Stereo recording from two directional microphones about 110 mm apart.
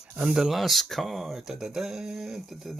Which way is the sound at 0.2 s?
5° right (ahead or behind).